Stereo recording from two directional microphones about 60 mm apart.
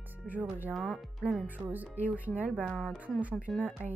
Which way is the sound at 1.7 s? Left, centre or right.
Right.